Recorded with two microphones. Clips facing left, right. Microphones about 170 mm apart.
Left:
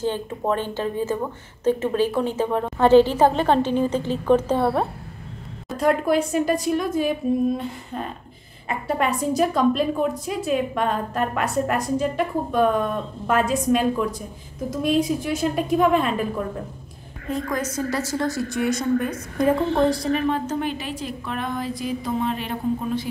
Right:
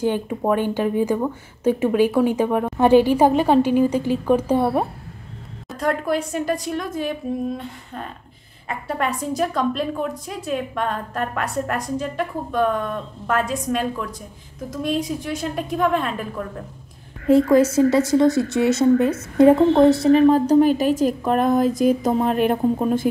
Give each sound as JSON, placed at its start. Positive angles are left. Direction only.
{"t": 0.0, "sound": "a woman's voice", "side_deg": -15}
{"t": 5.7, "sound": "a woman's voice", "side_deg": 5}
{"t": 17.3, "sound": "a woman's voice", "side_deg": -30}